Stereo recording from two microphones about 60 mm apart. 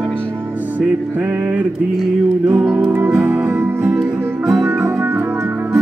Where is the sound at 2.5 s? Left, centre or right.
Centre.